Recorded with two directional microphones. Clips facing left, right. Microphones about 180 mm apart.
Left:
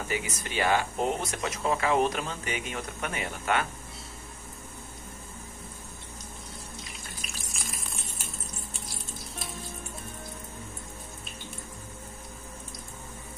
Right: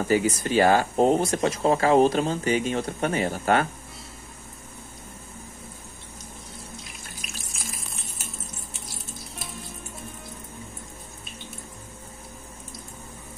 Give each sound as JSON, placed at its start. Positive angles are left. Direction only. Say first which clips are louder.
{"t": 0.1, "sound": "speech", "louder": "right 13 dB", "side_deg": -35}
{"t": 7.2, "sound": "frying", "louder": "right 2 dB", "side_deg": 0}